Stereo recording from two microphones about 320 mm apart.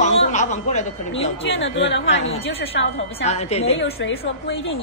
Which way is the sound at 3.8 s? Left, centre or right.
Left.